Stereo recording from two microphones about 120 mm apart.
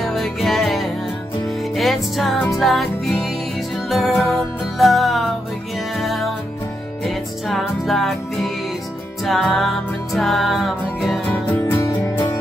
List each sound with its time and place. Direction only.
0.0 s music: centre (ahead or behind)
11.2 s music: 15° left (ahead or behind)